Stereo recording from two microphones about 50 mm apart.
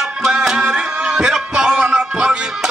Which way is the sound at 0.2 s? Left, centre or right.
Centre.